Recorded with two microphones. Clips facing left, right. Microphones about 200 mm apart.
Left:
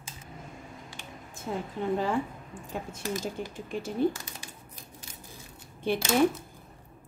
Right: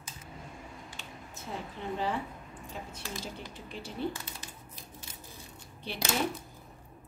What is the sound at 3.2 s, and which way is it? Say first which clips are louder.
Speech: left 7 dB; 50° left (ahead or behind).